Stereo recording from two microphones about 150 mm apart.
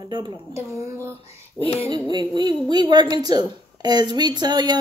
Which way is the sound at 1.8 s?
30° right (ahead or behind).